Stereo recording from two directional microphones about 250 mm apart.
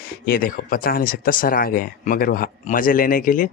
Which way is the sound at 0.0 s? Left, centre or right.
Left.